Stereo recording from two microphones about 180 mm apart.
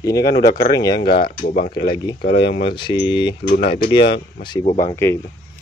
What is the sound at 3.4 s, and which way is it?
Speech, 55° left (ahead or behind).